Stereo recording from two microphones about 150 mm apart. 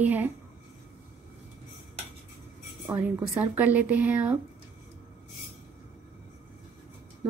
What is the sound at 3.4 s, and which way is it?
Speech, 10° right (ahead or behind).